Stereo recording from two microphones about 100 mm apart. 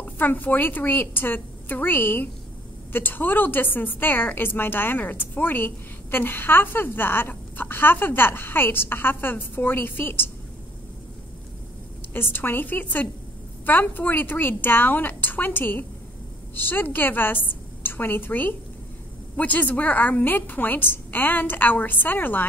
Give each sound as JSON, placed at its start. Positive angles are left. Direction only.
{"t": 0.0, "sound": "a woman's voice", "side_deg": 20}
{"t": 12.1, "sound": "a woman's voice", "side_deg": 20}